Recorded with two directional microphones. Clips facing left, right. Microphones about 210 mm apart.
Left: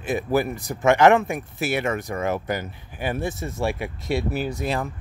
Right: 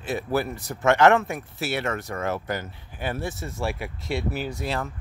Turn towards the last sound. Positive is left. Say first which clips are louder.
# left 3 dB
turn(degrees=15)  # may be behind; listen again after turning